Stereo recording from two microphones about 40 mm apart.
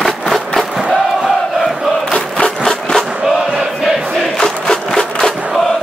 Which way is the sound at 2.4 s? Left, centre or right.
Centre.